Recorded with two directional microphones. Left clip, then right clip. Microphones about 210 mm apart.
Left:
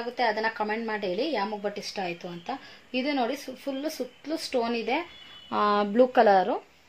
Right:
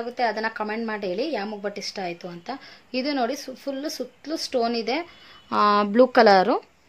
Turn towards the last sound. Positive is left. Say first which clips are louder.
# right 4 dB
turn(degrees=-25)  # may be behind; listen again after turning